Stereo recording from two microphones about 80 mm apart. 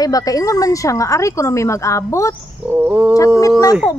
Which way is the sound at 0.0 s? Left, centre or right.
Left.